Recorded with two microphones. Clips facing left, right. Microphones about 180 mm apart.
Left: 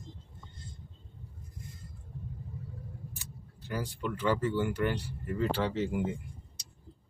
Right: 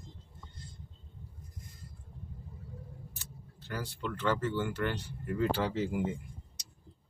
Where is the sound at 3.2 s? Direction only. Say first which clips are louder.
Left 2 dB; 15° left (ahead or behind).